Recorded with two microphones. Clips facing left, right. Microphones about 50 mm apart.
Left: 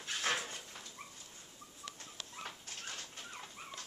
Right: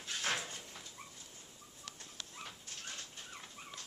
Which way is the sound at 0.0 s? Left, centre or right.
Left.